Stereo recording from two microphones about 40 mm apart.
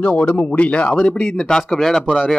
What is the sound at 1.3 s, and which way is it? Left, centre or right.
Speech, centre.